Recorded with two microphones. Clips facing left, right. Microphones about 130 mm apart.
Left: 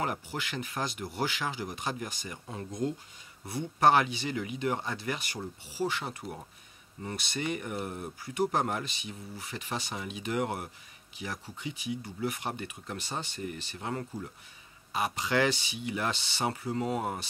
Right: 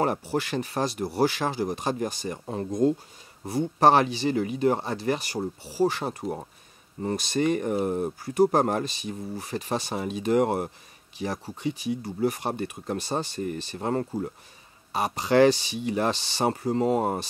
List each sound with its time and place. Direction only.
0.0 s speech: 35° right (ahead or behind)